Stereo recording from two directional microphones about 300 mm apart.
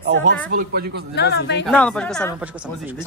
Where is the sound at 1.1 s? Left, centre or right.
Left.